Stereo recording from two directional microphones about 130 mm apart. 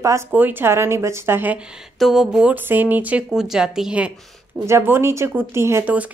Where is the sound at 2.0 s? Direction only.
Centre (ahead or behind).